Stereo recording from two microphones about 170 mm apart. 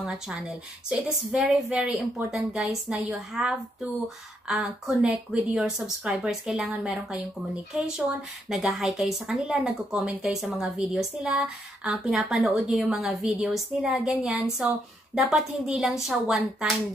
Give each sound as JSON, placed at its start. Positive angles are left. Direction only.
{"t": 0.0, "sound": "speech", "side_deg": -5}
{"t": 8.5, "sound": "speech", "side_deg": 0}